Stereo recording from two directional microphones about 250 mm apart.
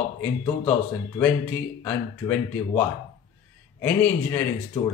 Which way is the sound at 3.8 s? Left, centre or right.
Centre.